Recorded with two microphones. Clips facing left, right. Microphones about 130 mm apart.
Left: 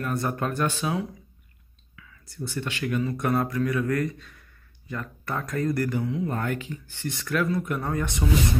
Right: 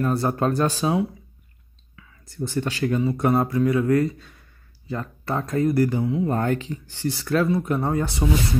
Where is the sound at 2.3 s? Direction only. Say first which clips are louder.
Right 6 dB; 45° right (ahead or behind); by 6.3 s 25° right (ahead or behind).